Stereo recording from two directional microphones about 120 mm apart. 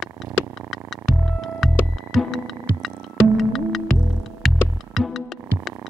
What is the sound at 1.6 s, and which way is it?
Music, centre (ahead or behind).